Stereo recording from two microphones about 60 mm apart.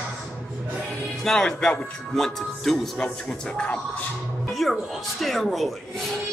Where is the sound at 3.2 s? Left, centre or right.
Centre.